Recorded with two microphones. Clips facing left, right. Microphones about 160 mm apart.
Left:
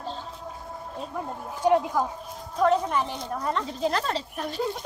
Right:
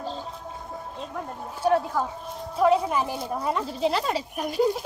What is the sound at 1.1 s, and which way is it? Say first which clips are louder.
Speech: left 1 dB; 15° left (ahead or behind).